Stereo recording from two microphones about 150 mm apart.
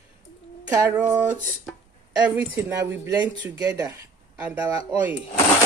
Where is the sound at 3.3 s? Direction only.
30° right (ahead or behind).